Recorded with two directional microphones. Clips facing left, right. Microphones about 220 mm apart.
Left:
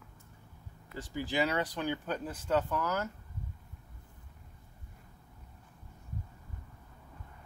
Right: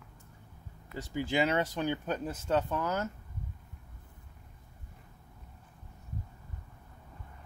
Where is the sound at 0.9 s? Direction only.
20° right (ahead or behind).